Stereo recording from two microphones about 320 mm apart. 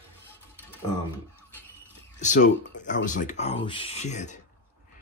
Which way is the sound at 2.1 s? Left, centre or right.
Left.